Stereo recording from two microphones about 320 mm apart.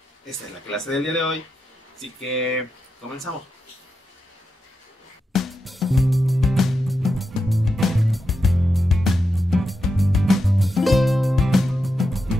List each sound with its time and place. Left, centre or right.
0.7 s speech: centre
5.3 s music: centre